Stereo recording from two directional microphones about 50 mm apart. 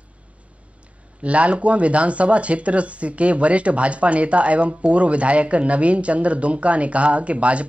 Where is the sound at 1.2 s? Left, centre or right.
Right.